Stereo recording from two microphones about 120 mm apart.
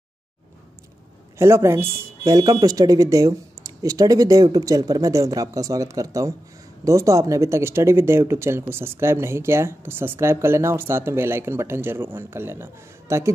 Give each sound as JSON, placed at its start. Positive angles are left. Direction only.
{"t": 1.4, "sound": "speech", "side_deg": -25}